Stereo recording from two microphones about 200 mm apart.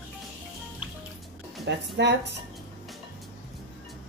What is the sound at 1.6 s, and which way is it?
Speech, 60° right (ahead or behind).